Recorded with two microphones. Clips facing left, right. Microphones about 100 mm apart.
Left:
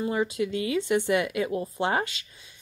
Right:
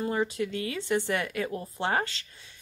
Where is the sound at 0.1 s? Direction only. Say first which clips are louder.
Left 2 dB; 20° left (ahead or behind).